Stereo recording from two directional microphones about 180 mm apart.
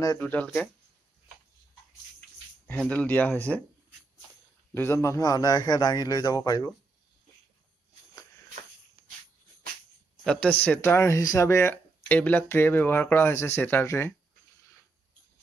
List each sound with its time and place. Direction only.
0.0 s speech: 15° left (ahead or behind)
2.1 s speech: 5° left (ahead or behind)
4.7 s a man's voice: 15° left (ahead or behind)
10.2 s speech: 5° left (ahead or behind)